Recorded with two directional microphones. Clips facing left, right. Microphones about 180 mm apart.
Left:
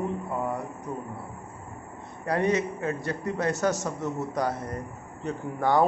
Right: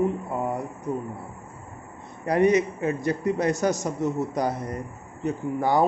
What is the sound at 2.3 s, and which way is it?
Speech, 15° right (ahead or behind).